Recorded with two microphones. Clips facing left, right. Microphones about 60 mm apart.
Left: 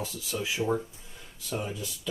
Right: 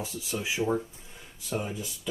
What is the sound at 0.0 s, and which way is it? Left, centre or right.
Speech, right.